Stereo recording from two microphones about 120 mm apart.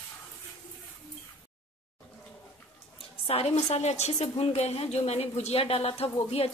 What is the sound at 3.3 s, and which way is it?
A woman's voice, 55° left (ahead or behind).